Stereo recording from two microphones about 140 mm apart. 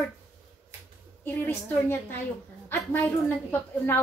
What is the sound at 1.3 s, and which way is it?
A woman's voice, 15° left (ahead or behind).